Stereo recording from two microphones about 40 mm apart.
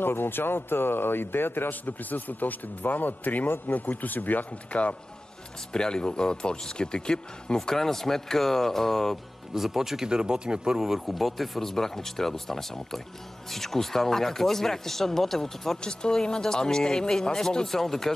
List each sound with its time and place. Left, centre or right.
0.0 s speech: left
4.7 s speech: left
5.7 s speech: left
7.5 s speech: centre
9.5 s speech: centre
10.0 s speech: centre
10.8 s speech: centre
15.8 s speech: left